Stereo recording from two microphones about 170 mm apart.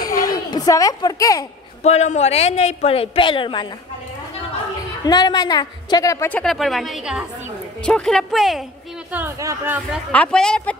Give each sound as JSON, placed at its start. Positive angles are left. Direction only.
{"t": 0.0, "sound": "a sound", "side_deg": 20}
{"t": 1.8, "sound": "a woman's voice", "side_deg": 40}
{"t": 5.0, "sound": "a woman's voice", "side_deg": 25}
{"t": 9.1, "sound": "speech", "side_deg": -15}
{"t": 10.1, "sound": "a woman's voice", "side_deg": 5}